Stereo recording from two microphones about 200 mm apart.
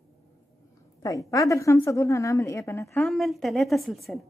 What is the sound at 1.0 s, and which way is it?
A woman's voice, 15° left (ahead or behind).